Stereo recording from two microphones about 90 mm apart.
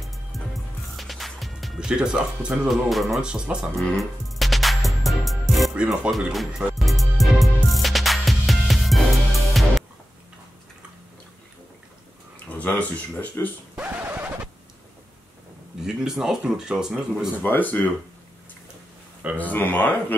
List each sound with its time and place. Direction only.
0.0 s music: centre (ahead or behind)
1.9 s speech: 10° right (ahead or behind)
2.9 s speech: centre (ahead or behind)
3.2 s speech: 10° right (ahead or behind)
3.9 s music: centre (ahead or behind)
5.8 s speech: 5° right (ahead or behind)
6.8 s music: centre (ahead or behind)
12.4 s speech: 15° left (ahead or behind)
13.7 s a sound: 20° right (ahead or behind)
15.8 s speech: 5° right (ahead or behind)
17.4 s speech: 20° left (ahead or behind)
19.3 s speech: 20° left (ahead or behind)